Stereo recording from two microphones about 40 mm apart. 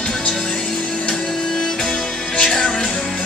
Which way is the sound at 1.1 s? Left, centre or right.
Centre.